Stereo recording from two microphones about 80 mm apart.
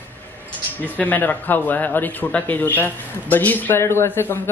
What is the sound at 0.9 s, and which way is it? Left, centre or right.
A man's voice, left.